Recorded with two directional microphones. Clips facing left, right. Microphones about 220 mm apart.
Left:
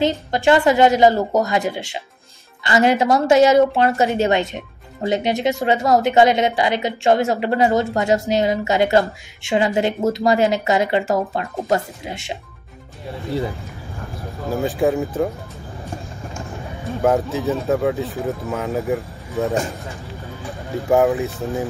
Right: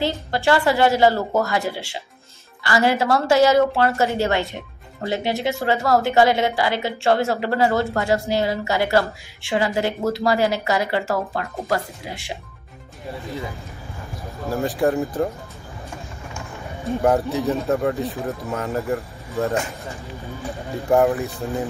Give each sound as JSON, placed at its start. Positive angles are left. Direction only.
{"t": 0.0, "sound": "a woman's voice", "side_deg": 20}
{"t": 14.4, "sound": "speech", "side_deg": 0}
{"t": 17.0, "sound": "speech", "side_deg": 0}